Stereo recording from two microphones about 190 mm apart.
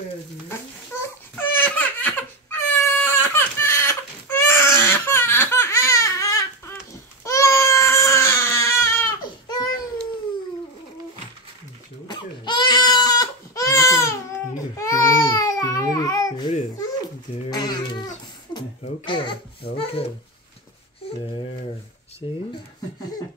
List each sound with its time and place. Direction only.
1.3 s crying: 10° left (ahead or behind)
7.2 s baby cry: 15° left (ahead or behind)
12.1 s crying: 25° left (ahead or behind)
14.8 s baby cry: 15° left (ahead or behind)
17.5 s a sound: 20° left (ahead or behind)
22.2 s a sound: 30° left (ahead or behind)